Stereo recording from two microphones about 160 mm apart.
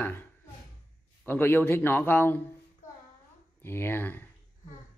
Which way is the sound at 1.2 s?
10° left (ahead or behind).